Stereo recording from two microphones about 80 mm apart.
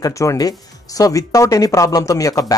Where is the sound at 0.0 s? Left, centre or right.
Left.